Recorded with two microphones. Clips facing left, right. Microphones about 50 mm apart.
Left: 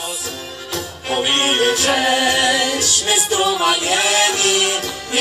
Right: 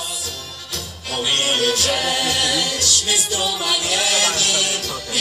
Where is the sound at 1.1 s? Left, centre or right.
Left.